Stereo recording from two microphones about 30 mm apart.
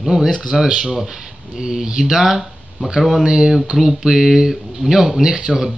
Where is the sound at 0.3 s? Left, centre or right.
Right.